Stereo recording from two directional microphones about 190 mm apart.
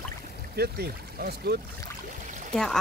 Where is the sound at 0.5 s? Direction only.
55° right (ahead or behind).